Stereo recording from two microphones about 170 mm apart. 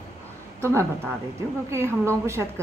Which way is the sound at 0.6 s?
15° right (ahead or behind).